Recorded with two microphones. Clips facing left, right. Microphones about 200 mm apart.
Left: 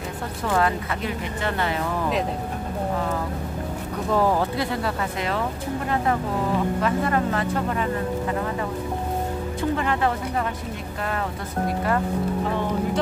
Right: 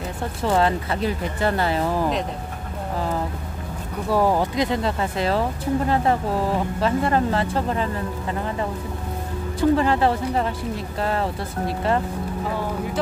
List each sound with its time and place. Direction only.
0.5 s speech: 30° right (ahead or behind)
4.1 s speech: 15° right (ahead or behind)
6.8 s speech: 30° right (ahead or behind)
9.6 s speech: 30° right (ahead or behind)